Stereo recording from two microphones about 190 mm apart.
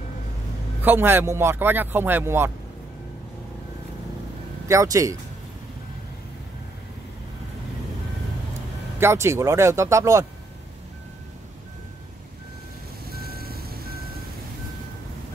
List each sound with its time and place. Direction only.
0.8 s speech: 10° right (ahead or behind)
4.6 s speech: 15° right (ahead or behind)
9.0 s speech: 15° right (ahead or behind)
13.0 s vehicle: 55° right (ahead or behind)